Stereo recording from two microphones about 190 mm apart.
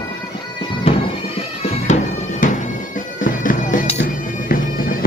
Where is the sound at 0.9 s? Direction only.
30° left (ahead or behind).